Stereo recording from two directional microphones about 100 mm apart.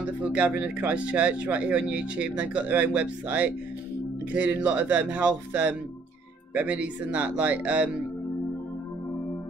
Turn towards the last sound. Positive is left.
turn(degrees=-15)  # may be behind; listen again after turning